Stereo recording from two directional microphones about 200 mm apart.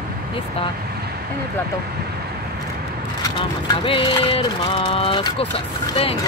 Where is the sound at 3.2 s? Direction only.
25° left (ahead or behind).